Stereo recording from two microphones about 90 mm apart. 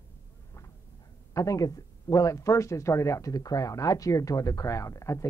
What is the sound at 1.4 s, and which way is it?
Speech, 40° left (ahead or behind).